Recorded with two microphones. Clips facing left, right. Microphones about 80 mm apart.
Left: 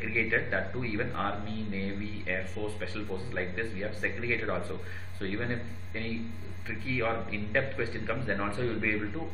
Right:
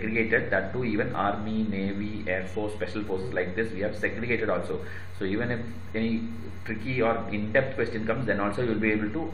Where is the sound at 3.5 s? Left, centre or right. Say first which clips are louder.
Right 6 dB; centre.